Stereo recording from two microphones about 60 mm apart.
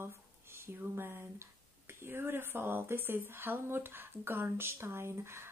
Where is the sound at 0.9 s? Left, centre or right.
Right.